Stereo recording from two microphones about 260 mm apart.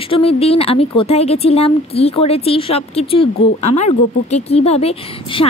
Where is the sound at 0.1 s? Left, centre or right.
Left.